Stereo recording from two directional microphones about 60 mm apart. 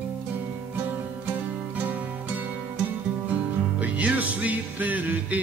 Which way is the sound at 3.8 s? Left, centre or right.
Right.